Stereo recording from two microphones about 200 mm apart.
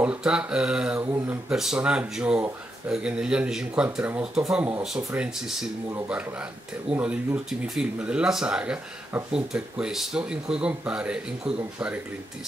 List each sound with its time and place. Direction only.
0.0 s speech: 5° right (ahead or behind)